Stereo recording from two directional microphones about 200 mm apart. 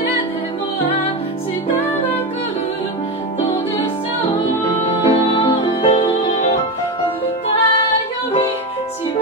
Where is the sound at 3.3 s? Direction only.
30° left (ahead or behind).